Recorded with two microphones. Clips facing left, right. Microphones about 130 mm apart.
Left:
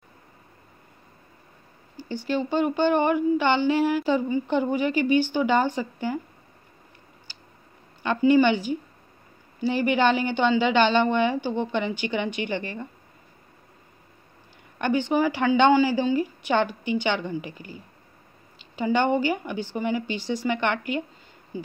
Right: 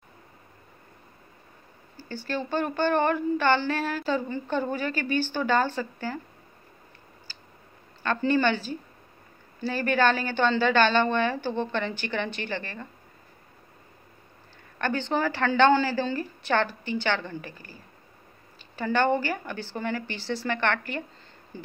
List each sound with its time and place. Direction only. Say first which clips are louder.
2.0 s a woman's voice: left 5 dB; 15° left (ahead or behind)
8.0 s a woman's voice: left 5 dB; 15° left (ahead or behind)
14.8 s a woman's voice: left 4 dB; 15° left (ahead or behind)